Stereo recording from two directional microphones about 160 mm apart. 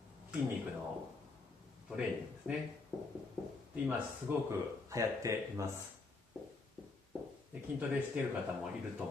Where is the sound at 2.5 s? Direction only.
10° right (ahead or behind).